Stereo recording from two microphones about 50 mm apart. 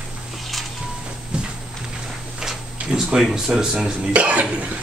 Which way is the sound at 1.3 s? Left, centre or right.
Centre.